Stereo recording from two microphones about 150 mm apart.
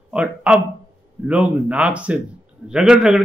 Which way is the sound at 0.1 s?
5° right (ahead or behind).